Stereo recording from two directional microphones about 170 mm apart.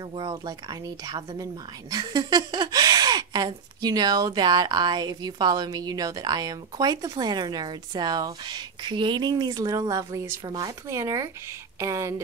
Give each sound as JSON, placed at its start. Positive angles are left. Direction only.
{"t": 0.1, "sound": "speech", "side_deg": -30}